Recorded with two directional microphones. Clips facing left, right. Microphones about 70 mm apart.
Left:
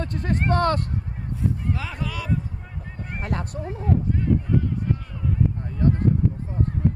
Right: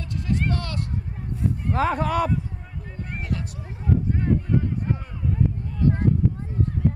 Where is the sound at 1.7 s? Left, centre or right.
Right.